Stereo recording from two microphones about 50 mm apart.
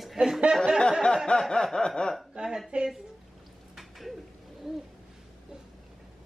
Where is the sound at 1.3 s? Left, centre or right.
Centre.